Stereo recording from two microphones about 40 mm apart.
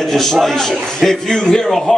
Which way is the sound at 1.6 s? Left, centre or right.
Centre.